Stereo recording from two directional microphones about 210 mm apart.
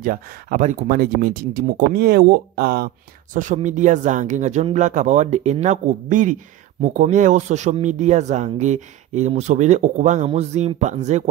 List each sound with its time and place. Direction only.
0.0 s speech: 40° right (ahead or behind)
3.3 s speech: 35° right (ahead or behind)